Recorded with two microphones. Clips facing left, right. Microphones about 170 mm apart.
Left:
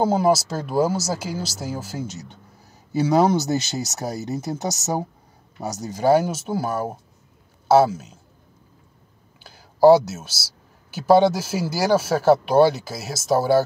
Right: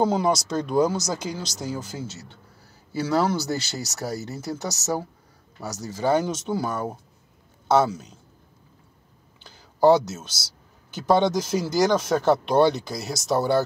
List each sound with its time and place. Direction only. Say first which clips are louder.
0.0 s a man's voice: left 3 dB; 5° left (ahead or behind)
9.4 s speech: left 4 dB; 10° left (ahead or behind)